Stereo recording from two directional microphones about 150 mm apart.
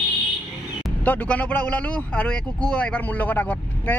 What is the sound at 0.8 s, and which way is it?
Speech, 10° left (ahead or behind).